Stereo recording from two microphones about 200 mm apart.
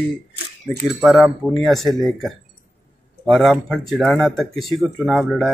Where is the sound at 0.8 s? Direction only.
Centre (ahead or behind).